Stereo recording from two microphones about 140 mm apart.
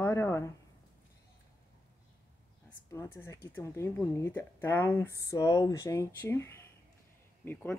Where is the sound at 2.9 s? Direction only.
20° left (ahead or behind).